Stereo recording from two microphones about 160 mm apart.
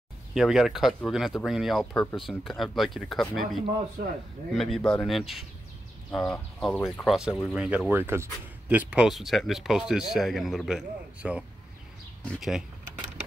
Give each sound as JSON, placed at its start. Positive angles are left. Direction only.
{"t": 0.3, "sound": "speech", "side_deg": 0}